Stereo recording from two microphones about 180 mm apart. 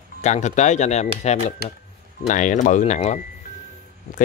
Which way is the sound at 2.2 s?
45° left (ahead or behind).